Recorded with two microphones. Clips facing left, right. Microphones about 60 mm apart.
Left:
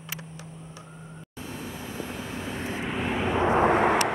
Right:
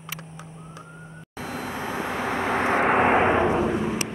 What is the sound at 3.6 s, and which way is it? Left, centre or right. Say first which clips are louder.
Vehicle: left 4 dB; left.